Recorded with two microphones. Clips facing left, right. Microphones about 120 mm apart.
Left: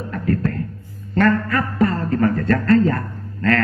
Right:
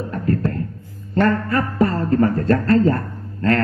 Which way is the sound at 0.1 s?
30° right (ahead or behind).